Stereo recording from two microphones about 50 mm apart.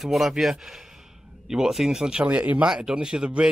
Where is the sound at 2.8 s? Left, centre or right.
Centre.